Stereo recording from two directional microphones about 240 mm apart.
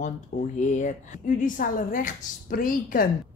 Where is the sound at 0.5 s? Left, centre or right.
Left.